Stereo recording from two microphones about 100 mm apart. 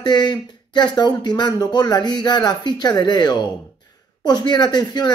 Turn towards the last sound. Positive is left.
turn(degrees=45)  # may be behind; listen again after turning